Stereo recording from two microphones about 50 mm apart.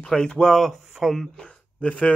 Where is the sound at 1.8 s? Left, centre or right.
Left.